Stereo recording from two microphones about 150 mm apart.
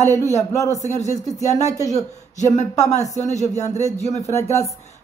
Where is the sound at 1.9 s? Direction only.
50° left (ahead or behind).